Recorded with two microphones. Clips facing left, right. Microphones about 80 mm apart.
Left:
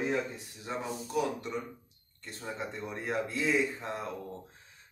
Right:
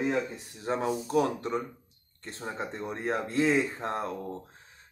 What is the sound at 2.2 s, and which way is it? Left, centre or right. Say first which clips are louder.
Speech: right 3 dB; right.